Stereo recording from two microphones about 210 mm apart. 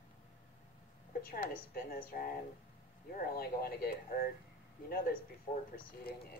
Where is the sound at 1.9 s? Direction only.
45° left (ahead or behind).